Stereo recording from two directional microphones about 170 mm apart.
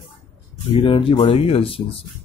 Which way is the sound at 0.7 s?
30° left (ahead or behind).